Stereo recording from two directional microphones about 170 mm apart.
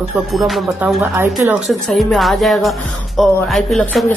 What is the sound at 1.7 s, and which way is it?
Speech, centre (ahead or behind).